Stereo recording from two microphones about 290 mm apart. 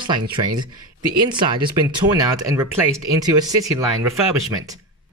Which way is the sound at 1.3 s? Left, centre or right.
Centre.